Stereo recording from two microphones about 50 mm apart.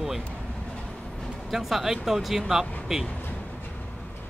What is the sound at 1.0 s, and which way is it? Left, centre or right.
Vehicle, centre.